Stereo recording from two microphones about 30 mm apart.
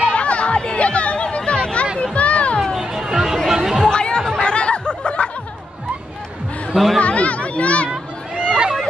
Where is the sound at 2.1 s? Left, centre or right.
Left.